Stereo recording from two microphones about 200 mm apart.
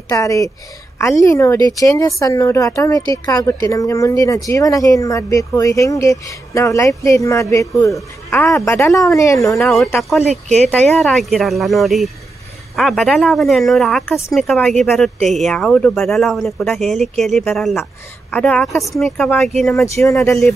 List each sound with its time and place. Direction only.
0.1 s speech: 15° left (ahead or behind)
9.6 s speech: centre (ahead or behind)
19.7 s speech: 15° left (ahead or behind)